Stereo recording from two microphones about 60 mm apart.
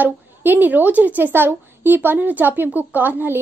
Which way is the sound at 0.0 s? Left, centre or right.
Right.